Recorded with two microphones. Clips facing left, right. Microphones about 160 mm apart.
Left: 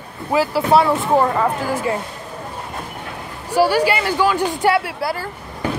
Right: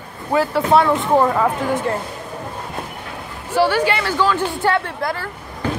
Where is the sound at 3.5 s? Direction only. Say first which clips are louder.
Left 1 dB; 10° left (ahead or behind).